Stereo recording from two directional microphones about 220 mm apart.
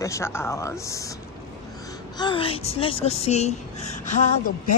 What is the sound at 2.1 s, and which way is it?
A woman's voice, 20° left (ahead or behind).